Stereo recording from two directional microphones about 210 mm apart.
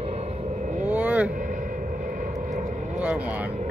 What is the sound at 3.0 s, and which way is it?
Speech, 5° right (ahead or behind).